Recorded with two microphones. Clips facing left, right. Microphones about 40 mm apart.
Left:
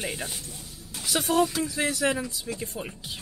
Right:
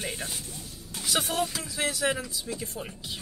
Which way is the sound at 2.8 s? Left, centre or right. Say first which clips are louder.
Left 1 dB; centre.